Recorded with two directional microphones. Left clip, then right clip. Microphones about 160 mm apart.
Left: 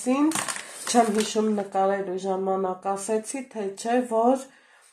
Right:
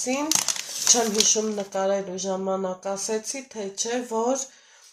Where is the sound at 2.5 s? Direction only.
35° left (ahead or behind).